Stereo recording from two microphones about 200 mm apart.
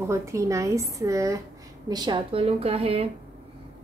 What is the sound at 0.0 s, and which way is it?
A woman's voice, 15° right (ahead or behind).